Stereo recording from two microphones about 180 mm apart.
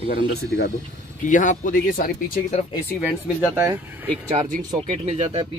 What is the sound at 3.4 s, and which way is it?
Speech, 15° right (ahead or behind).